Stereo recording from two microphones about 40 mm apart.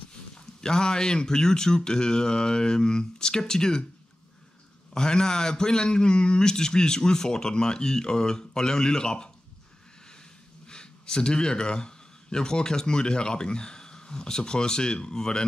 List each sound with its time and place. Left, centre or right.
0.3 s speech: centre
4.9 s a man's voice: centre
10.7 s speech: left